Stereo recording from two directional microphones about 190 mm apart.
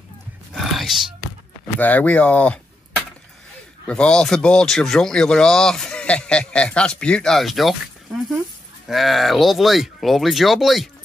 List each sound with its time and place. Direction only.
0.5 s music: centre (ahead or behind)
1.8 s speech: 10° left (ahead or behind)
3.8 s speech: 5° left (ahead or behind)
8.8 s speech: centre (ahead or behind)